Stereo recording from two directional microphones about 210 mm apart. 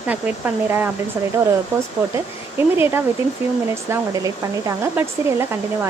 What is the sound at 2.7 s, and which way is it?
Speech, 10° right (ahead or behind).